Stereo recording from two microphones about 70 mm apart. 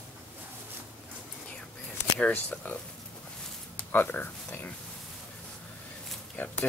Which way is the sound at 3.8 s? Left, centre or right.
Left.